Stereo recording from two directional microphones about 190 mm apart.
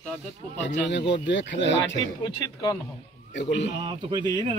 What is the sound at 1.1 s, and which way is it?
Speech, 70° left (ahead or behind).